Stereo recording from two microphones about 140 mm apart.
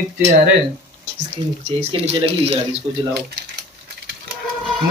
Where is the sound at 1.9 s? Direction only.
45° right (ahead or behind).